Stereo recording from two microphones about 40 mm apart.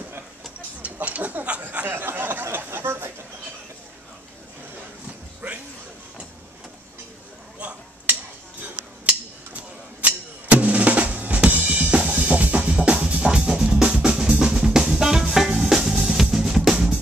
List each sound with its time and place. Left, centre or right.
0.8 s speech: right
1.9 s speech: right
5.4 s a sound: right
7.6 s finger snapping: right
10.0 s drum: right
12.3 s music: right
13.2 s music: right
13.8 s drum: right
14.7 s drum kit: centre